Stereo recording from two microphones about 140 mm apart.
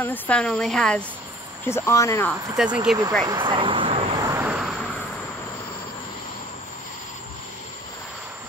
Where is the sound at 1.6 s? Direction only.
20° left (ahead or behind).